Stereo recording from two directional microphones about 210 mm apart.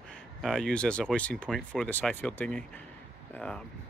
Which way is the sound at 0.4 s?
Centre (ahead or behind).